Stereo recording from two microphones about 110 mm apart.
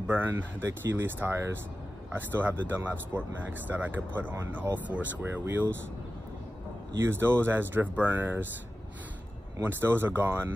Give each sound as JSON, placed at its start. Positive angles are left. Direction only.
{"t": 0.0, "sound": "speech", "side_deg": -20}
{"t": 7.1, "sound": "speech", "side_deg": -20}
{"t": 9.6, "sound": "speech", "side_deg": -20}